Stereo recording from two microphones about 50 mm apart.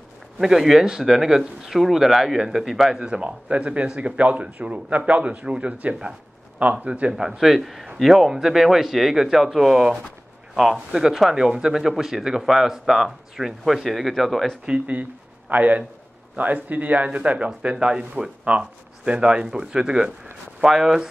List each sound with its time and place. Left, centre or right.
0.4 s a man's voice: centre
3.0 s speech: right
7.1 s a man's voice: centre
15.5 s speech: right; by 21.1 s centre